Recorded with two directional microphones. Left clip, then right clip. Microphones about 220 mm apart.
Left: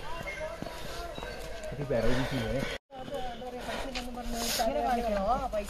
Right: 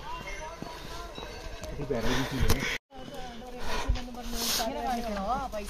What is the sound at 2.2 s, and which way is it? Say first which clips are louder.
Speech: right 1 dB; 10° right (ahead or behind).